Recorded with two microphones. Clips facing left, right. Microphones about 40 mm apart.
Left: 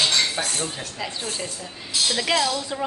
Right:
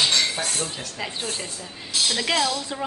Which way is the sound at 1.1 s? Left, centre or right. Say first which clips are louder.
Even; right.